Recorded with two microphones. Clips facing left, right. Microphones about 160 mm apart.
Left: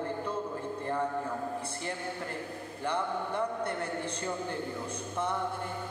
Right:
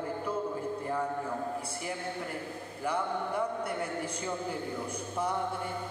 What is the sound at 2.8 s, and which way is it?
A man's voice, 10° right (ahead or behind).